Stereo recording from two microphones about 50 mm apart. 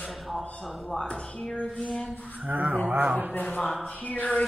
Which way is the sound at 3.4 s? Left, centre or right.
Left.